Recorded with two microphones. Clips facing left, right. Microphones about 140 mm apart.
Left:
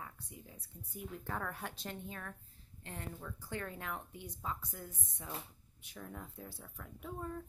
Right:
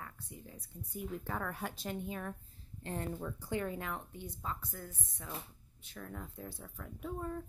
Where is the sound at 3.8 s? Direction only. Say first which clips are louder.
Right 2 dB; centre (ahead or behind).